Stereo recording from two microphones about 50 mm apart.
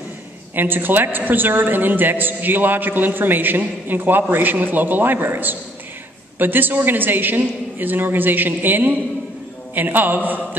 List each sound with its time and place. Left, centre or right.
0.6 s a man's voice: right